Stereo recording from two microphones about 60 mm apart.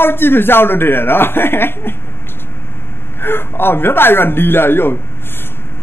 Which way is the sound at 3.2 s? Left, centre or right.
Left.